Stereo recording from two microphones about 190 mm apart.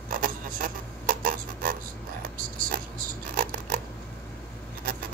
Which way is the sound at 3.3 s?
50° right (ahead or behind).